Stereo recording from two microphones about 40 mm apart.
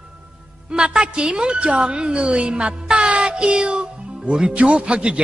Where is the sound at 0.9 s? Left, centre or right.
Right.